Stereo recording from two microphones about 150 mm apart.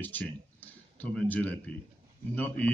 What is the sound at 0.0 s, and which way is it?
A man's voice, 10° left (ahead or behind).